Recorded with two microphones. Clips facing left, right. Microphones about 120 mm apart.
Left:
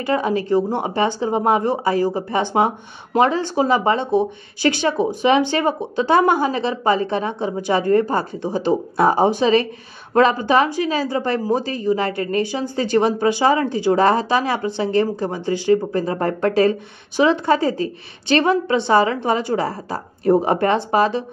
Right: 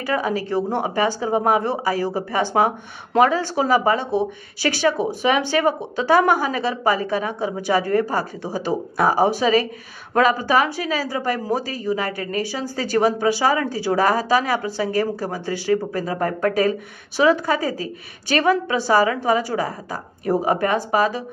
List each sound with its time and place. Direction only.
0.0 s speech: 25° left (ahead or behind)